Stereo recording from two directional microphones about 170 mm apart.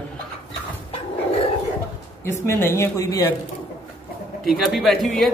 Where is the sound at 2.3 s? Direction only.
15° left (ahead or behind).